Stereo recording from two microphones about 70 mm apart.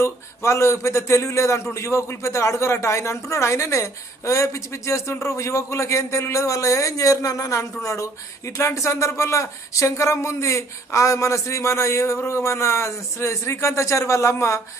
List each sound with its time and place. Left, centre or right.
0.0 s a man's voice: left